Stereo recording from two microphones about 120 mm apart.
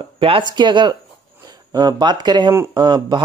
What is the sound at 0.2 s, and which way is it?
Speech, 40° right (ahead or behind).